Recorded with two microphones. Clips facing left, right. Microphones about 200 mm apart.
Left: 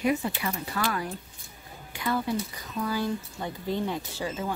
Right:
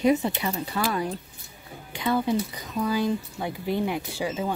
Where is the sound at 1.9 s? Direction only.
20° right (ahead or behind).